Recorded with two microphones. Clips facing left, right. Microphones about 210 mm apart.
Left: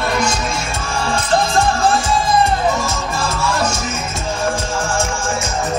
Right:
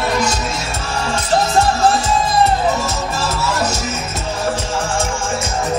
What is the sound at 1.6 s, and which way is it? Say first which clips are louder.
Music: right 1 dB; 40° right (ahead or behind).